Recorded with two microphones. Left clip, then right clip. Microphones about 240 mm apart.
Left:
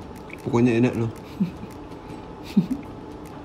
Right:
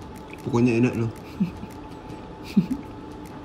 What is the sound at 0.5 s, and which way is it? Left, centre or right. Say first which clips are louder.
Speech: left 1 dB; centre.